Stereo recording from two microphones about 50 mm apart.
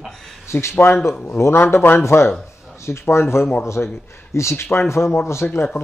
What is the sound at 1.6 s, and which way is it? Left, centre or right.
Speech, left.